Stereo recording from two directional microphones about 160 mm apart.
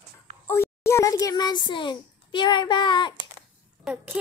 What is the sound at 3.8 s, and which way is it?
Speech, 5° right (ahead or behind).